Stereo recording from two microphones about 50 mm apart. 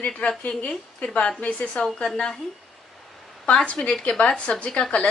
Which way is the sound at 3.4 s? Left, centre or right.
Left.